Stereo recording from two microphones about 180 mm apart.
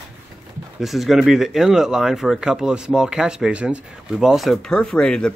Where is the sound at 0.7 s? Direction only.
Centre (ahead or behind).